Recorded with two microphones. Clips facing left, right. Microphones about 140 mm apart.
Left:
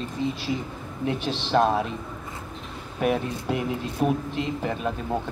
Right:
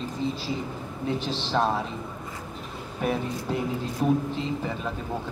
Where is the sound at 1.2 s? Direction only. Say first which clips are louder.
Left 5 dB; 15° left (ahead or behind).